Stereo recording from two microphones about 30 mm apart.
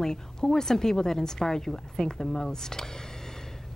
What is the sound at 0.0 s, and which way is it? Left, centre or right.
A woman's voice, centre.